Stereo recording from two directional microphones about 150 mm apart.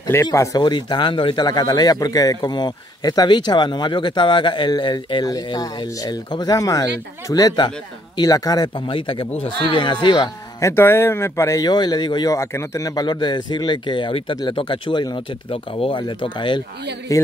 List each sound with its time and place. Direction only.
0.0 s speech: 20° left (ahead or behind)
10.7 s speech: 15° left (ahead or behind); by 16.6 s 30° left (ahead or behind)
17.1 s speech: 20° left (ahead or behind)